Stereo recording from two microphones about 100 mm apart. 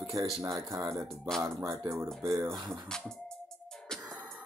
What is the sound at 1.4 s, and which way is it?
Speech, 30° right (ahead or behind).